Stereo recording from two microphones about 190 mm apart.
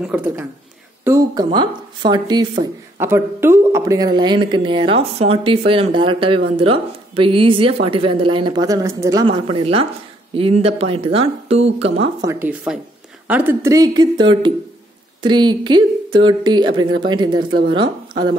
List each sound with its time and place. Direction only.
0.0 s speech: 5° right (ahead or behind)
1.0 s speech: 20° right (ahead or behind)
9.2 s speech: 25° right (ahead or behind)
12.2 s speech: 15° right (ahead or behind)